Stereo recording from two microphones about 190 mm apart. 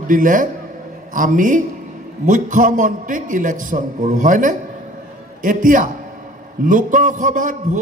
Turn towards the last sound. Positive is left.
turn(degrees=-45)  # may be behind; listen again after turning